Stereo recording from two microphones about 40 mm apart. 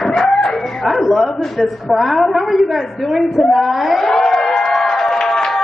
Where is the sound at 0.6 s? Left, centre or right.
Centre.